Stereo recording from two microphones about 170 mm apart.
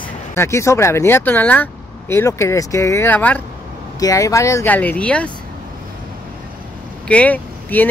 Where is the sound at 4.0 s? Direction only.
20° left (ahead or behind).